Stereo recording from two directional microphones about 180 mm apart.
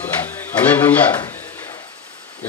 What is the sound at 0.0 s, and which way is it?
Speech, 10° left (ahead or behind).